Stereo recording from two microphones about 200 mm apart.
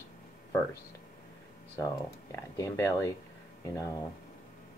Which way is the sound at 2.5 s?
15° left (ahead or behind).